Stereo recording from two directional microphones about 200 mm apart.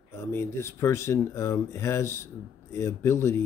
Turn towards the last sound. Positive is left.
turn(degrees=15)  # may be behind; listen again after turning